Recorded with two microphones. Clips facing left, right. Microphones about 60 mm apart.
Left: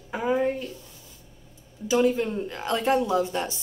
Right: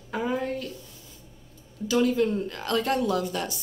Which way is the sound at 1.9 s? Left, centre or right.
Centre.